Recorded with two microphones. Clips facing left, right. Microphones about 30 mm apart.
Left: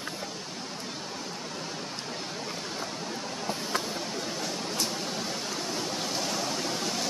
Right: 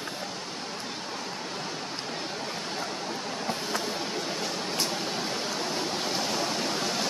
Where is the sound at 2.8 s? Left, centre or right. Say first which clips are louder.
Right 2 dB; centre.